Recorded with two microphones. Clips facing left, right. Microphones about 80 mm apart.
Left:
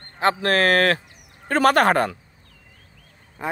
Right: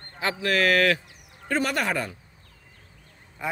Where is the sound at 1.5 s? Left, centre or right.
Left.